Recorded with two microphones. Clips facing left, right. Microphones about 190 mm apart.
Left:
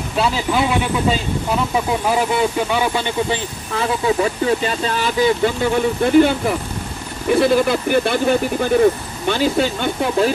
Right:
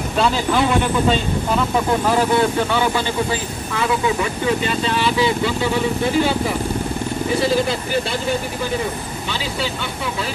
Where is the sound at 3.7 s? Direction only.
35° left (ahead or behind); by 8.1 s 55° left (ahead or behind).